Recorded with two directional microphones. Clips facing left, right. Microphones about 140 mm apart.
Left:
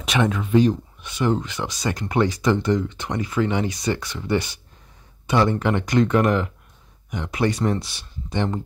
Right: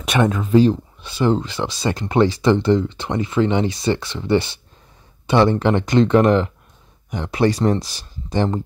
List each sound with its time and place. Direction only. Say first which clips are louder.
0.0 s speech: right 3 dB; 50° right (ahead or behind)